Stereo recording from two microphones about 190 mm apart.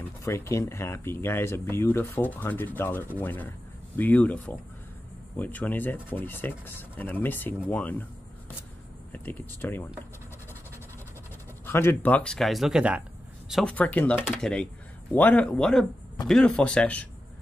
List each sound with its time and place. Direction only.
0.2 s speech: 15° left (ahead or behind)
9.1 s speech: 10° left (ahead or behind)
11.6 s speech: 10° left (ahead or behind)